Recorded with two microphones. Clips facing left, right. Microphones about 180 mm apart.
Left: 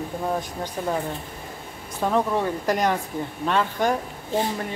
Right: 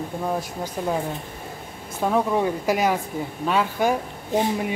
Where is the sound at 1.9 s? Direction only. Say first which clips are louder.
Right 1 dB; 5° right (ahead or behind).